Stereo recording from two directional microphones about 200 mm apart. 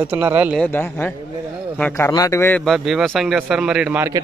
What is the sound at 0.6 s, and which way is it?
A man's voice, 10° left (ahead or behind).